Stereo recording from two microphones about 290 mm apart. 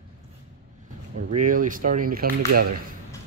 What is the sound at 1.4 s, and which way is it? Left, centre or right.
Speech, right.